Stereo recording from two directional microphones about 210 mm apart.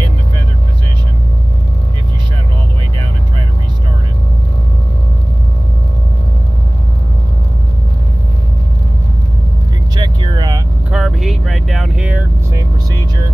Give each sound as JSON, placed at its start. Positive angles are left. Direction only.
{"t": 9.9, "sound": "vehicle", "side_deg": -20}
{"t": 10.9, "sound": "vehicle", "side_deg": 0}